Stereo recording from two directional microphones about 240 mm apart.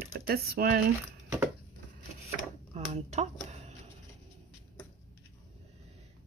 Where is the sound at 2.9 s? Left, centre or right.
Right.